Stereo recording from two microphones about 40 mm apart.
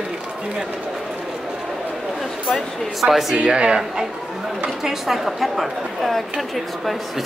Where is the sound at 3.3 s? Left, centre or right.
Right.